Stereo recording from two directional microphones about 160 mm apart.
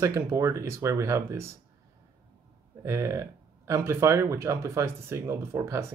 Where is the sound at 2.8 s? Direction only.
20° right (ahead or behind).